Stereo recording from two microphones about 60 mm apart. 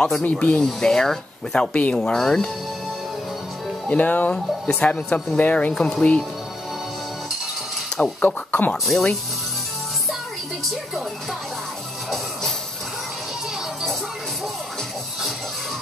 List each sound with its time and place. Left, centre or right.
0.2 s speech: left
2.0 s speech: centre
3.9 s speech: left
8.0 s speech: centre
8.5 s speech: left
8.8 s speech: centre